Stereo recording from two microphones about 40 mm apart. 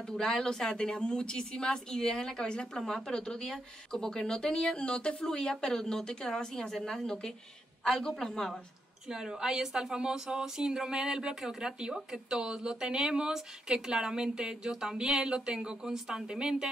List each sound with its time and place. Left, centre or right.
0.0 s a woman's voice: centre
4.7 s speech: left
9.1 s a woman's voice: centre